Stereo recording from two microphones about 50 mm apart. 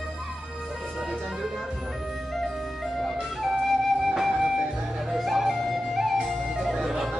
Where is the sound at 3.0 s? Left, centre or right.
Centre.